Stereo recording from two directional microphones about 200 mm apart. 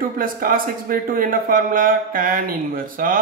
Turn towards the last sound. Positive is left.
turn(degrees=-45)  # may be behind; listen again after turning